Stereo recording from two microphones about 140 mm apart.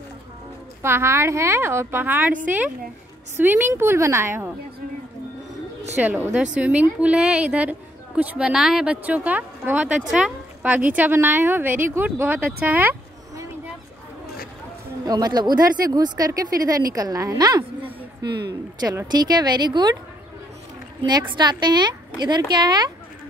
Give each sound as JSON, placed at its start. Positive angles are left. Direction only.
{"t": 0.8, "sound": "speech", "side_deg": -20}
{"t": 5.9, "sound": "speech", "side_deg": -15}
{"t": 15.0, "sound": "speech", "side_deg": -30}
{"t": 21.0, "sound": "a woman's voice", "side_deg": -30}